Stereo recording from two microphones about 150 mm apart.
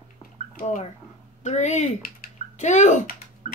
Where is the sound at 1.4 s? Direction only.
50° left (ahead or behind).